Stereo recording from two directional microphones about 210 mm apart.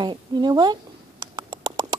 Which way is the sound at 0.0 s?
20° right (ahead or behind).